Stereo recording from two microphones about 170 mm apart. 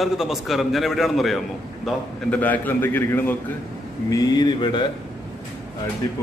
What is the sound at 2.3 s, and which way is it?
A man's voice, 10° left (ahead or behind).